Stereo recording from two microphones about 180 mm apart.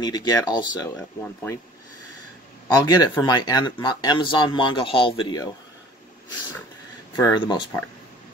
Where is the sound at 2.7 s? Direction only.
20° left (ahead or behind).